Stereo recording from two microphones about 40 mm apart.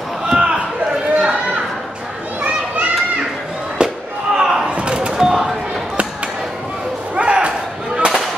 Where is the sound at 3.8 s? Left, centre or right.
Right.